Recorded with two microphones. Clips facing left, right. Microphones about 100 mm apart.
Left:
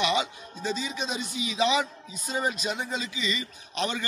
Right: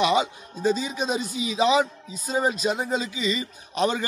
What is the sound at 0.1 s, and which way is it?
Speech, 40° right (ahead or behind).